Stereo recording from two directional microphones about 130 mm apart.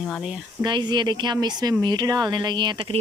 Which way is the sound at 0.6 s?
35° right (ahead or behind).